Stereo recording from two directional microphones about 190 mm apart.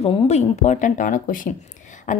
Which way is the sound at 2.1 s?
40° left (ahead or behind).